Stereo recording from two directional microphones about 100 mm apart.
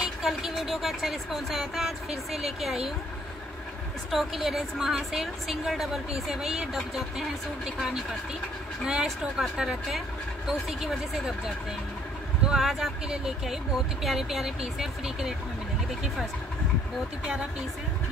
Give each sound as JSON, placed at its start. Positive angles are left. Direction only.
{"t": 0.0, "sound": "a woman's voice", "side_deg": -5}
{"t": 4.1, "sound": "a woman's voice", "side_deg": -5}